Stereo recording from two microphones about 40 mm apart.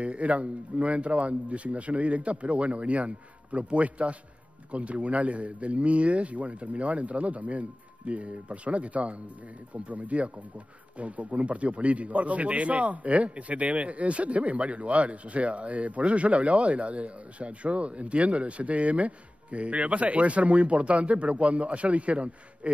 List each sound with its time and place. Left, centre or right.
0.0 s speech: right